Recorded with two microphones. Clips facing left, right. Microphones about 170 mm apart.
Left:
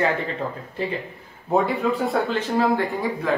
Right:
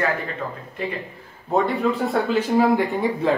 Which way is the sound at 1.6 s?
5° right (ahead or behind).